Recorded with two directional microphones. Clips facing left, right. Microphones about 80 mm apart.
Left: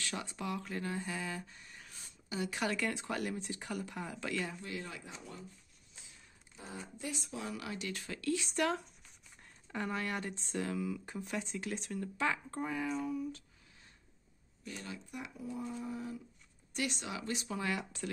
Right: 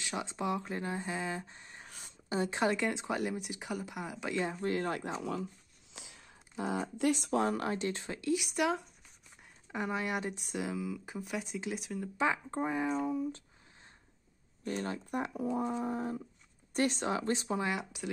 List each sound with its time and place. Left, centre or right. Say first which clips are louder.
0.0 s speech: right 4 dB; right
4.6 s speech: right 10 dB; right
5.1 s speech: right 12 dB; right
7.4 s speech: right 8 dB; right
14.6 s speech: right 9 dB; right; by 18.1 s centre